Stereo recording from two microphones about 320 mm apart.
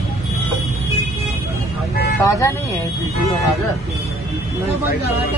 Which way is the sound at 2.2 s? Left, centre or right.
Centre.